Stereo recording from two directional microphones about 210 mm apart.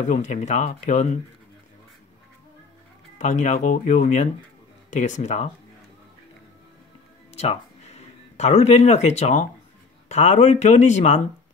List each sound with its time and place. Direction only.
0.1 s speech: 35° left (ahead or behind)
3.2 s speech: 35° left (ahead or behind)
7.3 s speech: 30° left (ahead or behind)